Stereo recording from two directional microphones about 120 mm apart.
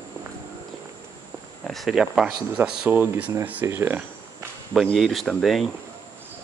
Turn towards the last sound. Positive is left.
turn(degrees=0)  # may be behind; listen again after turning